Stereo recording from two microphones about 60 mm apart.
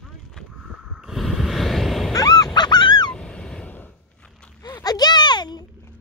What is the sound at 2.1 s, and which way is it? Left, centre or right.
Goose, left.